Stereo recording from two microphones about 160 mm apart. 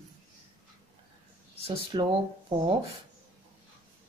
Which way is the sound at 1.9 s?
30° right (ahead or behind).